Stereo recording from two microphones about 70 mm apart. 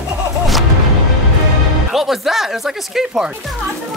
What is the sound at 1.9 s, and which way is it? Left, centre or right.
Speech, centre.